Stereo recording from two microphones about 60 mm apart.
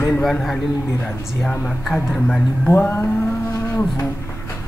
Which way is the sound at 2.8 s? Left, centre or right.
Left.